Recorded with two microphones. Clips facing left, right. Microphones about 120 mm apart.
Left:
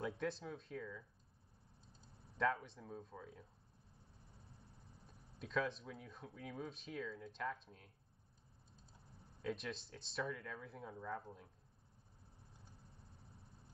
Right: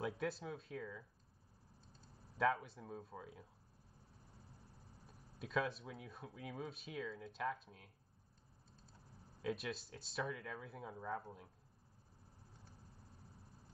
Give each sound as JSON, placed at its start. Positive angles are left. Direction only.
{"t": 0.0, "sound": "speech", "side_deg": -5}
{"t": 2.1, "sound": "speech", "side_deg": 0}
{"t": 4.9, "sound": "speech", "side_deg": -5}
{"t": 9.2, "sound": "speech", "side_deg": 0}
{"t": 13.2, "sound": "cricket", "side_deg": 25}